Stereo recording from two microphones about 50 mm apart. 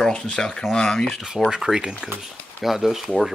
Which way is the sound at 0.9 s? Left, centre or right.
Centre.